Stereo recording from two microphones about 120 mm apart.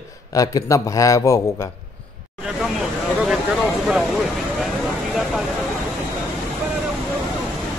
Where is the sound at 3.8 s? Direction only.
Centre (ahead or behind).